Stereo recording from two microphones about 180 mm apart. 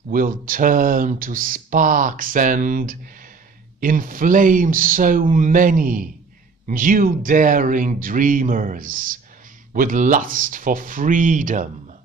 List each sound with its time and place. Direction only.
0.1 s speech: 50° right (ahead or behind)